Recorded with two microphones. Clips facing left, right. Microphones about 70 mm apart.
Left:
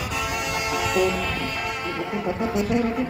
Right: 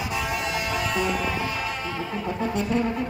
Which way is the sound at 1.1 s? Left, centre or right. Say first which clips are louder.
Right 1 dB; centre.